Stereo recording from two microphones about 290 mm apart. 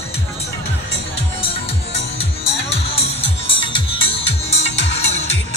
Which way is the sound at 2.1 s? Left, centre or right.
Centre.